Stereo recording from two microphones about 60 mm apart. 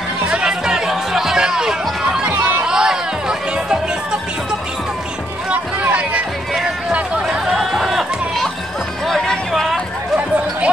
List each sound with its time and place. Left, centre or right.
0.3 s music: centre
7.2 s chatter: centre
9.0 s music: centre
10.1 s a sound: right